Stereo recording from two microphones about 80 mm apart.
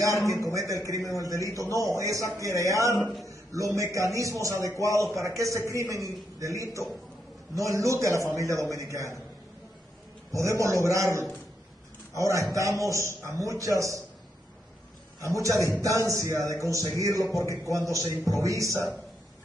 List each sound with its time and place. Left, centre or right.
0.3 s a man's voice: right
10.3 s a man's voice: right
15.2 s a man's voice: right